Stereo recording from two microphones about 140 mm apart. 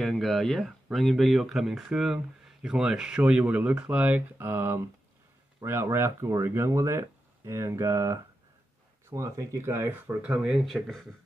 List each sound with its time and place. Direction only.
0.0 s speech: centre (ahead or behind)